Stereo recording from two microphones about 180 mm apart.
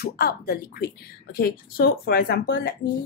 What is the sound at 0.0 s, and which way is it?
A woman's voice, 60° left (ahead or behind).